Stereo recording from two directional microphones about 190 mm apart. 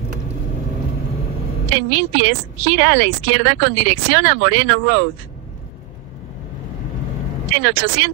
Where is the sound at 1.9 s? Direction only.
80° right.